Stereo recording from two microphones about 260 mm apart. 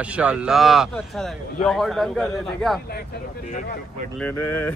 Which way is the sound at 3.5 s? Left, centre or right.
Left.